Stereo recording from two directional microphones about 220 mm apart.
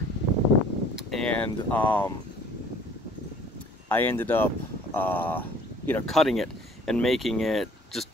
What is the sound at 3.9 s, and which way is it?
Speech, 10° left (ahead or behind).